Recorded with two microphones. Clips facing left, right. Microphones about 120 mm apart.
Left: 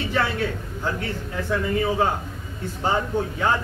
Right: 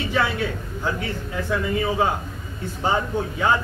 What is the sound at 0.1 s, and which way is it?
Speech, 10° right (ahead or behind).